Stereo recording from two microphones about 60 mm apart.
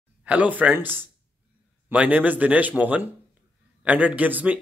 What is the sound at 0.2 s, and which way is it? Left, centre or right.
Speech, right.